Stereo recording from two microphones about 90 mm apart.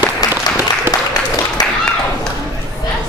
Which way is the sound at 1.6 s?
45° left (ahead or behind).